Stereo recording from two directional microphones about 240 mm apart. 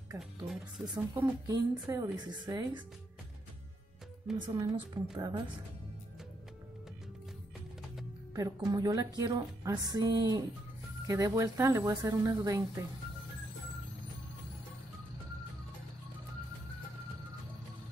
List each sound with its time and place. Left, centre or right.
0.2 s speech: centre
0.9 s speech: centre
4.4 s speech: centre
8.4 s speech: centre